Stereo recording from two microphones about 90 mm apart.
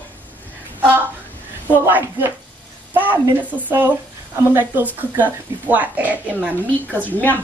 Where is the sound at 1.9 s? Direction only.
20° right (ahead or behind).